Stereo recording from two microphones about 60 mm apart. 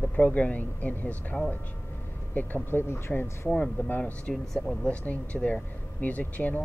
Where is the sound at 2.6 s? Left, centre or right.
Left.